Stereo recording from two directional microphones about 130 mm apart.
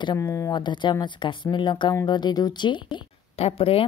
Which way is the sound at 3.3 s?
50° left (ahead or behind).